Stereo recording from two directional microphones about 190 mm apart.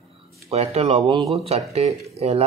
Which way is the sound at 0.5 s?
35° right (ahead or behind).